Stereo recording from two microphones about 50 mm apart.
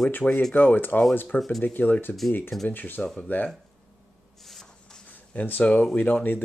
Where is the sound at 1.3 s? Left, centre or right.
Centre.